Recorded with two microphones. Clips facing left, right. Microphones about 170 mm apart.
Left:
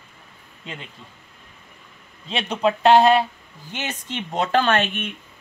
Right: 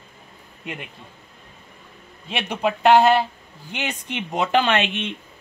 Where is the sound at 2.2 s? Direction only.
5° right (ahead or behind).